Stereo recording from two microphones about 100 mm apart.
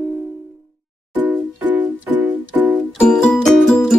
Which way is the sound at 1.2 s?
15° right (ahead or behind).